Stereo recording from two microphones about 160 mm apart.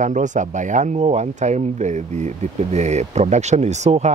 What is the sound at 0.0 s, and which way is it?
Speech, 50° right (ahead or behind).